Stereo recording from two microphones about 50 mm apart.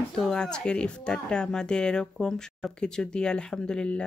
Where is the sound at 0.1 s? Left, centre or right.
Centre.